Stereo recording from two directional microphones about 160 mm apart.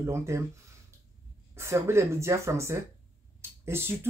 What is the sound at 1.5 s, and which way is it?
Speech, 15° right (ahead or behind).